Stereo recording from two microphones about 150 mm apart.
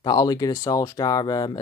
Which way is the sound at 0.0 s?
25° left (ahead or behind).